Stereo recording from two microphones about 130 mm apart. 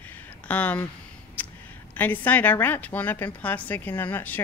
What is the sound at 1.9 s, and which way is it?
A woman's voice, 15° left (ahead or behind).